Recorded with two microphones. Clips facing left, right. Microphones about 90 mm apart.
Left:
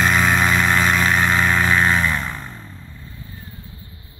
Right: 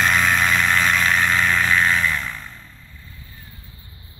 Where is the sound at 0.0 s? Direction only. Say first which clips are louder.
Left 1 dB; 10° left (ahead or behind).